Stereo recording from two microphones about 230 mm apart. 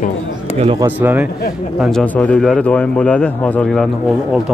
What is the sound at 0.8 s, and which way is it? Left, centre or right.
A man's voice, centre.